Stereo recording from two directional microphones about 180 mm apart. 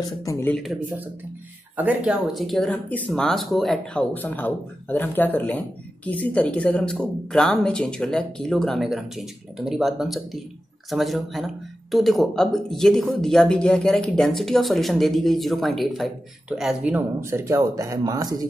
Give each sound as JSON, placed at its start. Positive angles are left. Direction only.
{"t": 0.0, "sound": "speech", "side_deg": 20}
{"t": 1.8, "sound": "speech", "side_deg": -5}